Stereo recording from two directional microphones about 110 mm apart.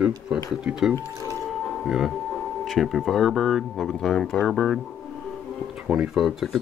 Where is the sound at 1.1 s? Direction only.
25° right (ahead or behind).